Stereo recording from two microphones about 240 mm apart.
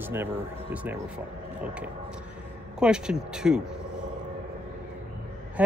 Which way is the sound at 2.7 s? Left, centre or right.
Centre.